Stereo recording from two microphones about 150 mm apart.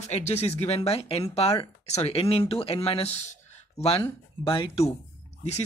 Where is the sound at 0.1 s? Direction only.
45° left (ahead or behind).